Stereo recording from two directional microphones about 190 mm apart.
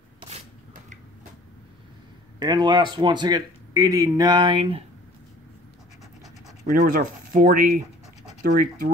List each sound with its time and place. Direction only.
2.3 s speech: 20° right (ahead or behind)
6.6 s speech: 45° right (ahead or behind)